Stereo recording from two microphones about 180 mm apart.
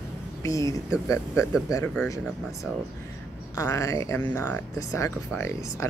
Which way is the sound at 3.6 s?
20° left (ahead or behind).